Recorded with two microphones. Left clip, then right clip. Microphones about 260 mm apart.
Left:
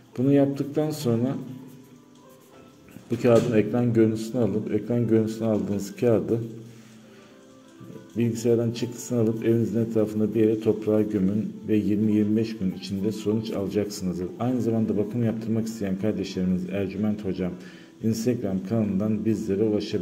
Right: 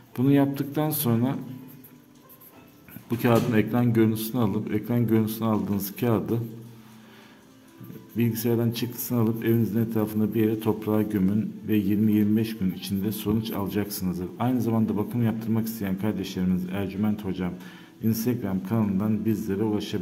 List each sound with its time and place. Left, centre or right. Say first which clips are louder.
0.1 s a man's voice: left 1 dB; centre
3.2 s a man's voice: left 3 dB; centre
8.2 s a man's voice: left 3 dB; centre